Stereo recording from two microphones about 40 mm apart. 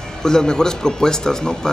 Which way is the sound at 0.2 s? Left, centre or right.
Centre.